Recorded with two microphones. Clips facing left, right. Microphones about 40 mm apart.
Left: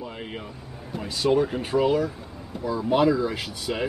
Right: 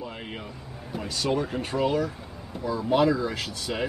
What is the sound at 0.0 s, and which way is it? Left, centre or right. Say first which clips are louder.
Vehicle: left 2 dB; centre.